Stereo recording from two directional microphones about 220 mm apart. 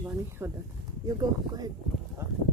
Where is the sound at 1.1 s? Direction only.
15° right (ahead or behind).